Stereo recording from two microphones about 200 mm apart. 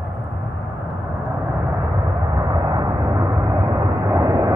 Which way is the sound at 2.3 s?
15° right (ahead or behind).